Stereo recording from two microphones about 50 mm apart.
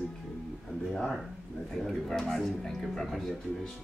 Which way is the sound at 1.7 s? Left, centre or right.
Centre.